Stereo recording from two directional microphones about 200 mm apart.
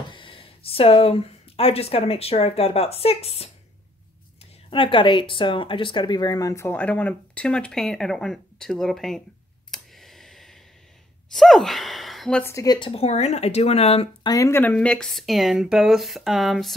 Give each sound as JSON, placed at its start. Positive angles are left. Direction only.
{"t": 0.1, "sound": "speech", "side_deg": 25}
{"t": 4.6, "sound": "speech", "side_deg": 25}
{"t": 9.7, "sound": "a sound", "side_deg": 0}
{"t": 11.3, "sound": "speech", "side_deg": 0}
{"t": 12.5, "sound": "speech", "side_deg": 20}
{"t": 14.3, "sound": "speech", "side_deg": 15}